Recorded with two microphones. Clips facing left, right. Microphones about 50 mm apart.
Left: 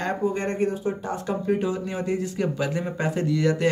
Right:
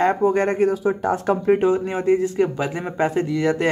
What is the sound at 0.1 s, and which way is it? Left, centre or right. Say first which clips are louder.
Speech: right 7 dB; right.